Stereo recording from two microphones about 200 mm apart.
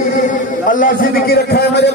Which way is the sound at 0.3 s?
40° left (ahead or behind).